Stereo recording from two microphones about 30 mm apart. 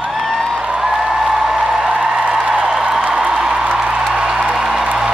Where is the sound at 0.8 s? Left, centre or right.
Centre.